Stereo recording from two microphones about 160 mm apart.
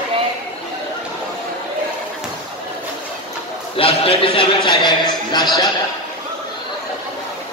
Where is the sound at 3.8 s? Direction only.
35° left (ahead or behind).